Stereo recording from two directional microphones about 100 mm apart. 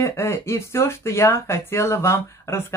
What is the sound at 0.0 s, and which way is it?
Speech, 30° left (ahead or behind).